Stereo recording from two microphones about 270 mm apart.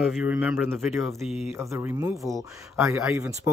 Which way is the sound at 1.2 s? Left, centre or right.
Left.